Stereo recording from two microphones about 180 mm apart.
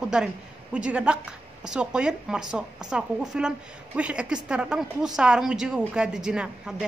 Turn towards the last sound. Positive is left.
turn(degrees=-5)  # may be behind; listen again after turning